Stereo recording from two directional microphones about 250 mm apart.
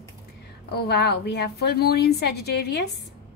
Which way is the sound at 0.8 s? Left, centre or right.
Left.